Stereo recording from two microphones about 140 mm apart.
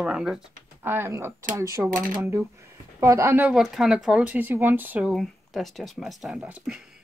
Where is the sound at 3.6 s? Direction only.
Centre (ahead or behind).